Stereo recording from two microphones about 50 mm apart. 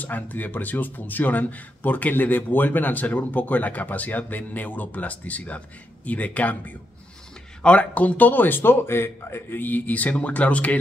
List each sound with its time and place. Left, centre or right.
0.0 s speech: left